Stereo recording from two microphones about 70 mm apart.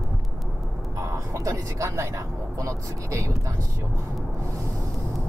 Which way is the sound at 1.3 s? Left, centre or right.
Right.